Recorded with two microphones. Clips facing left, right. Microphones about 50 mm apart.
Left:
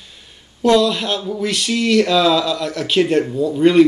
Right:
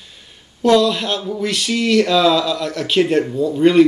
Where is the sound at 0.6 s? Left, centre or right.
Centre.